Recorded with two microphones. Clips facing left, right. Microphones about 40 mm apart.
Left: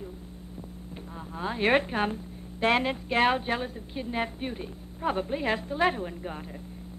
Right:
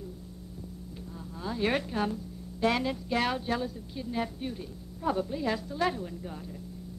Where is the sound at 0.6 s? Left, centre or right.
Left.